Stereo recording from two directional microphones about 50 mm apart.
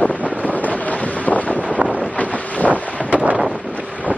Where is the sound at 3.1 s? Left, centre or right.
Right.